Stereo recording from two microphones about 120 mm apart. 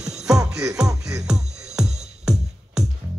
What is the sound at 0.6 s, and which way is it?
Music, 30° right (ahead or behind).